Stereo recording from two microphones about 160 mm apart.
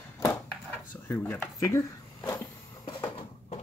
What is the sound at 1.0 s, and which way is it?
Speech, 10° left (ahead or behind).